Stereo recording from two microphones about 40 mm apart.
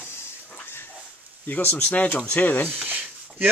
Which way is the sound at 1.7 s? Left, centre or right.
Left.